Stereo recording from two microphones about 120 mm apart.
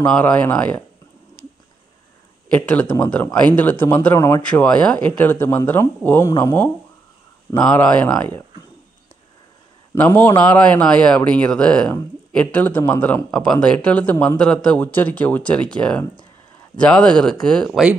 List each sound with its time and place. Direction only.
0.0 s speech: 15° left (ahead or behind)
2.5 s speech: 10° left (ahead or behind)
4.4 s speech: 10° left (ahead or behind)
7.5 s speech: 10° left (ahead or behind)
9.9 s speech: 15° left (ahead or behind)